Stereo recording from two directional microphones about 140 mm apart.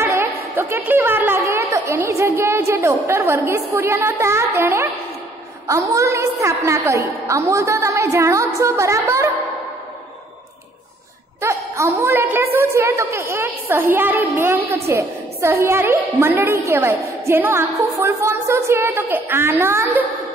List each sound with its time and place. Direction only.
0.0 s chatter: 15° right (ahead or behind)
0.6 s a woman's voice: 15° right (ahead or behind)
11.4 s a sound: 20° right (ahead or behind)
12.5 s a woman's voice: 20° right (ahead or behind)